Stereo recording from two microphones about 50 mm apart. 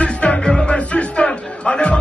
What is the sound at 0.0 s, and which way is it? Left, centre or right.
Music, left.